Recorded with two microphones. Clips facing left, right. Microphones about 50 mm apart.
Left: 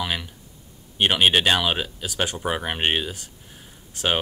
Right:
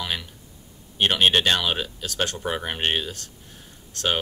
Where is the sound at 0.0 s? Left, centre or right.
Centre.